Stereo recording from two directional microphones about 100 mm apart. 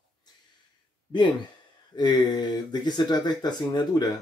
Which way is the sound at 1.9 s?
45° left (ahead or behind).